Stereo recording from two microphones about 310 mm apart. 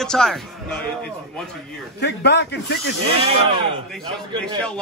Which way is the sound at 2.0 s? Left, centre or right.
Left.